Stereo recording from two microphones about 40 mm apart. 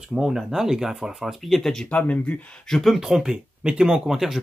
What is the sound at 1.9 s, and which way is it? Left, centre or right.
Speech, left.